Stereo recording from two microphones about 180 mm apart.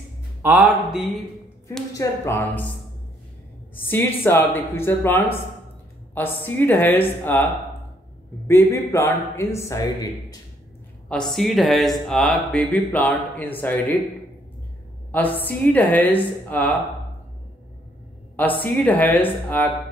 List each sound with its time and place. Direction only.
0.4 s speech: 10° right (ahead or behind)
2.0 s a man's voice: 15° left (ahead or behind)
3.7 s a man's voice: 10° left (ahead or behind)
11.1 s speech: 5° left (ahead or behind)
15.0 s a man's voice: 10° left (ahead or behind)
18.3 s a man's voice: 10° left (ahead or behind)